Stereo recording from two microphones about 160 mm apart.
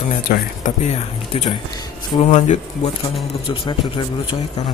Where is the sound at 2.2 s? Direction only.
50° left (ahead or behind).